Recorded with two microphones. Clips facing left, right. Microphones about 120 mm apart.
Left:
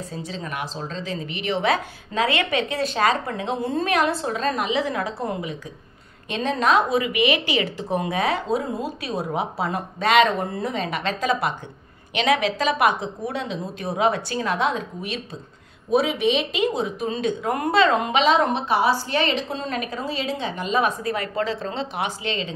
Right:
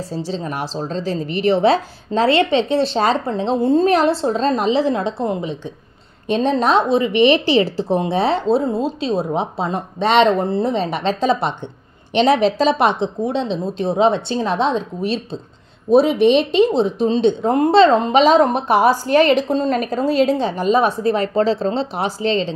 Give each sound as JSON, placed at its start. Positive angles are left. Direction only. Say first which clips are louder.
{"t": 0.1, "sound": "a woman's voice", "louder": "right 7 dB", "side_deg": -30}